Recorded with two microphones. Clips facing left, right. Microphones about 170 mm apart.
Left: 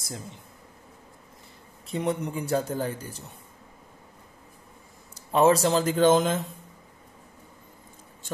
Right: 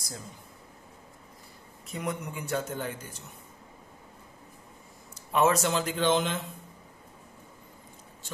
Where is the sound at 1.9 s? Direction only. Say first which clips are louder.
Left 6 dB; 30° left (ahead or behind).